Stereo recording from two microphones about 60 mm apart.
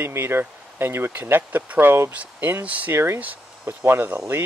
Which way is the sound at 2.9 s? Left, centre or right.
Right.